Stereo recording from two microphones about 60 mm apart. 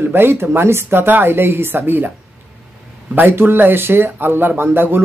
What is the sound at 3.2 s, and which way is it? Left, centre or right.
Speech, right.